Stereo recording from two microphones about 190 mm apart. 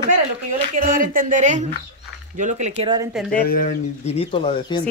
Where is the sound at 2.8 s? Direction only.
20° right (ahead or behind).